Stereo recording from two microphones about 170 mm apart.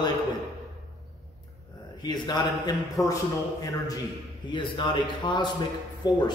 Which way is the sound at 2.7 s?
Centre (ahead or behind).